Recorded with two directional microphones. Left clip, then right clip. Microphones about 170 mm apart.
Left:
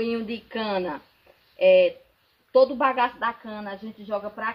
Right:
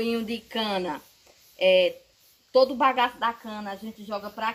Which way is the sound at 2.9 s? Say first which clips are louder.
Even; 20° right (ahead or behind).